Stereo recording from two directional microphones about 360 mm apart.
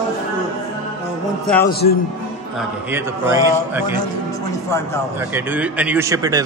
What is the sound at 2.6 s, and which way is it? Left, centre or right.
A man's voice, centre.